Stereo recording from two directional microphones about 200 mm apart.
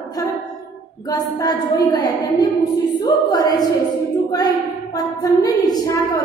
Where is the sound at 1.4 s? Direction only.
20° left (ahead or behind).